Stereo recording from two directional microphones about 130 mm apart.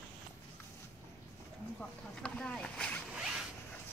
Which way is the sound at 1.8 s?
5° left (ahead or behind).